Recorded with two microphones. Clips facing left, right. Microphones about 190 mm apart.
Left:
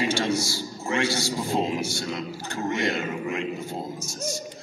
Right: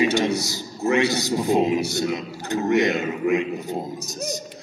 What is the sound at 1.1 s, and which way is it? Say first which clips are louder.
Speech: right 6 dB; 20° right (ahead or behind).